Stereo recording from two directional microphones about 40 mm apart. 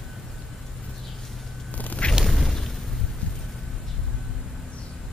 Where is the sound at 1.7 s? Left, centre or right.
Left.